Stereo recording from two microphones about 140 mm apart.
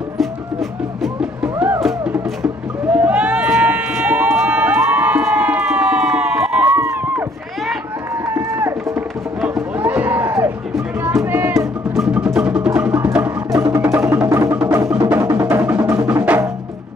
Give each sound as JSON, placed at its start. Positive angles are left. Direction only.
{"t": 0.2, "sound": "music", "side_deg": 0}
{"t": 2.4, "sound": "a sound", "side_deg": -10}
{"t": 8.3, "sound": "run", "side_deg": -15}
{"t": 9.4, "sound": "a sound", "side_deg": -10}
{"t": 11.0, "sound": "music", "side_deg": -15}
{"t": 11.5, "sound": "music", "side_deg": 0}
{"t": 13.6, "sound": "percussion", "side_deg": -20}
{"t": 14.9, "sound": "music", "side_deg": -10}